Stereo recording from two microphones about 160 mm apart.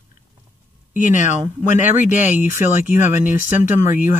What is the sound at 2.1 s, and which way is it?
Speech, 10° right (ahead or behind).